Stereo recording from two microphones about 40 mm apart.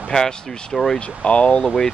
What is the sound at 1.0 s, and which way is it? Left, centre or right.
Speech, left.